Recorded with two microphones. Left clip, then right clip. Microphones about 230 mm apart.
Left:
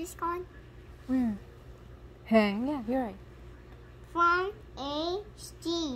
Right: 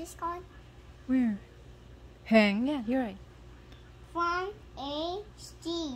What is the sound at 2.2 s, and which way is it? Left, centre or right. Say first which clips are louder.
Speech: right 1 dB; right.